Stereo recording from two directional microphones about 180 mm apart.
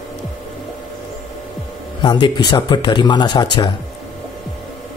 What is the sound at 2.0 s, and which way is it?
Speech, 25° left (ahead or behind).